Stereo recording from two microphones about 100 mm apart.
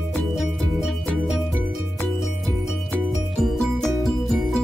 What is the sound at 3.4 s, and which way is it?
Music, 5° left (ahead or behind).